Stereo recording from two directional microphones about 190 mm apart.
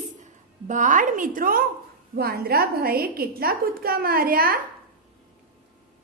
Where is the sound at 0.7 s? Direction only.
40° right (ahead or behind).